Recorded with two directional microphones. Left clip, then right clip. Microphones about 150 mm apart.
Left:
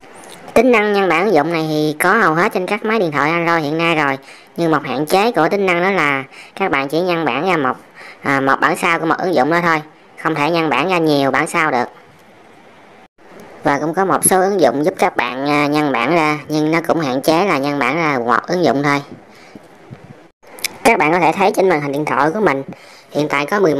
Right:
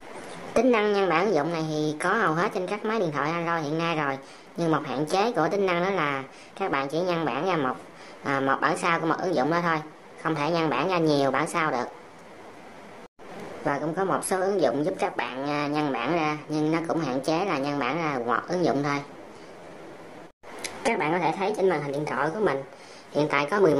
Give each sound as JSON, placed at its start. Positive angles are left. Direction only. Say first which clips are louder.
{"t": 0.5, "sound": "a woman's voice", "louder": "left 10 dB", "side_deg": 35}
{"t": 13.7, "sound": "a woman's voice", "louder": "left 11 dB", "side_deg": 40}
{"t": 20.6, "sound": "a woman's voice", "louder": "left 13 dB", "side_deg": 45}
{"t": 23.1, "sound": "speech", "louder": "left 7 dB", "side_deg": 30}